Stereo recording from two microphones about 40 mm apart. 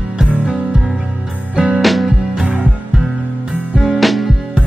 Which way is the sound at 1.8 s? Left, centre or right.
Centre.